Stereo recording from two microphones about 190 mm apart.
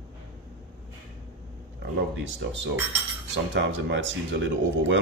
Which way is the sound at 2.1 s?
75° right (ahead or behind).